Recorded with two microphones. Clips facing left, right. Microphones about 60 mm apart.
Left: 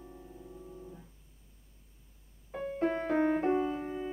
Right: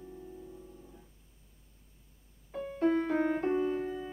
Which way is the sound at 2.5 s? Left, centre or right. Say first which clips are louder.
Right 3 dB; left.